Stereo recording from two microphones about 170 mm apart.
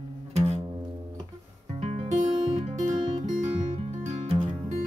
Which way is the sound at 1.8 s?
35° right (ahead or behind).